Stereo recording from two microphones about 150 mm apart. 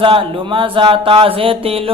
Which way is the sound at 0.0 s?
35° right (ahead or behind).